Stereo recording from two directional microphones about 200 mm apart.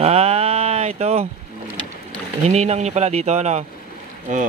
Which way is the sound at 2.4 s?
35° right (ahead or behind).